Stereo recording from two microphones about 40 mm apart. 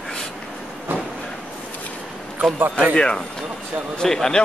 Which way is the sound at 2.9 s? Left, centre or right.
Left.